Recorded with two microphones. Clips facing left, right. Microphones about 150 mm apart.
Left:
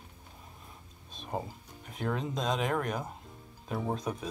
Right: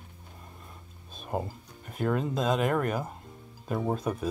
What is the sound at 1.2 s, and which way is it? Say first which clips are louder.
Speech: right 4 dB; 5° right (ahead or behind).